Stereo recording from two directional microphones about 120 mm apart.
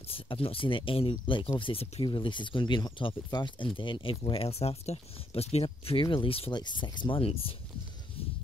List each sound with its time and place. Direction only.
0.1 s speech: 50° left (ahead or behind)
6.6 s speech: 40° left (ahead or behind)
8.2 s a sound: 50° left (ahead or behind)